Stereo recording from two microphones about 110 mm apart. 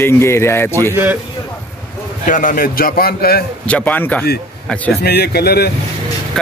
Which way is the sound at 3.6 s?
15° left (ahead or behind).